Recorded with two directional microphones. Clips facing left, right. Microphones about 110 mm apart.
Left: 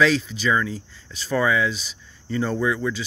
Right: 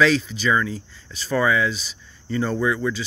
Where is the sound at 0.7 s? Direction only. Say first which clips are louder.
Right 1 dB; 15° left (ahead or behind).